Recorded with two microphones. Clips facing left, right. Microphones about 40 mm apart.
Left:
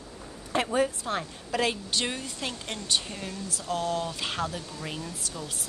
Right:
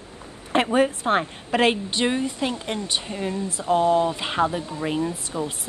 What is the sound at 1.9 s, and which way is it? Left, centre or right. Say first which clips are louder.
Speech: right 8 dB; right.